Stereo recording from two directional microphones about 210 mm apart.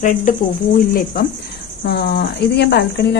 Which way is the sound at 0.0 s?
35° left (ahead or behind).